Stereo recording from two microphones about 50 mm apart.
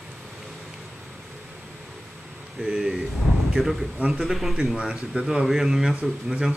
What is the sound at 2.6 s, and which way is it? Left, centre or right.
Speech, centre.